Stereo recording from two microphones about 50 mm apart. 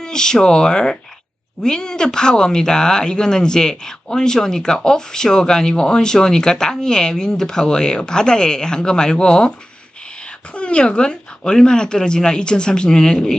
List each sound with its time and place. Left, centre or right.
0.0 s speech: centre
10.5 s speech: left